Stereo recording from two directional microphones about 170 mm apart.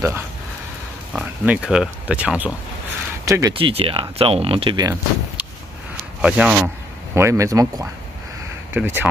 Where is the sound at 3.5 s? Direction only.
30° right (ahead or behind).